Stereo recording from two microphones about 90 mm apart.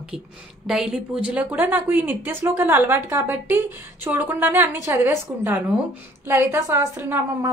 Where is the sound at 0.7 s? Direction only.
5° right (ahead or behind).